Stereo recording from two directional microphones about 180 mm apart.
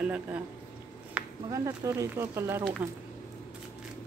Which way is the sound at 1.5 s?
15° right (ahead or behind).